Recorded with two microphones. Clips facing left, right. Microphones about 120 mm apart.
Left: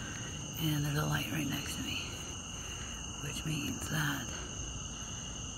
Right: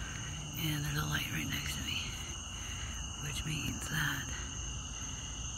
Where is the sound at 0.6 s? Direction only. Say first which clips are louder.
Left 5 dB; 25° left (ahead or behind).